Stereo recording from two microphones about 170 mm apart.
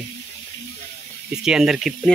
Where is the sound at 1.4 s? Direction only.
5° right (ahead or behind).